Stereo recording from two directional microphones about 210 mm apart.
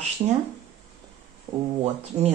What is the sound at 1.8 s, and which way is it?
Speech, 30° right (ahead or behind).